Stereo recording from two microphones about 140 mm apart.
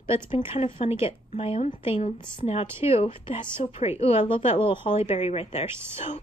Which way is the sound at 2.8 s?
45° left (ahead or behind).